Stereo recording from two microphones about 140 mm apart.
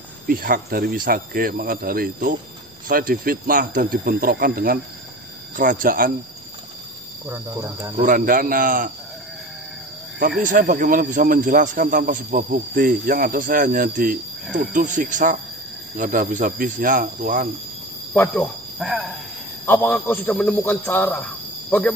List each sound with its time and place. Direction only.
0.3 s speech: 90° right
5.6 s speech: 75° right (ahead or behind)
7.2 s speech: 25° right (ahead or behind)
7.9 s speech: 70° right (ahead or behind)
10.4 s speech: 70° right (ahead or behind)
14.6 s speech: 70° right (ahead or behind)
18.1 s a man's voice: 15° left (ahead or behind)
18.8 s speech: centre (ahead or behind)
19.6 s a man's voice: 15° left (ahead or behind)